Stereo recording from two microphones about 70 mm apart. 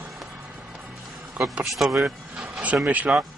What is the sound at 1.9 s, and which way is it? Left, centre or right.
Speech, centre.